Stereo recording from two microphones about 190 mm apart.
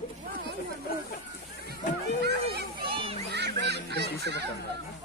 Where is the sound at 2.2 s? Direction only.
55° right (ahead or behind).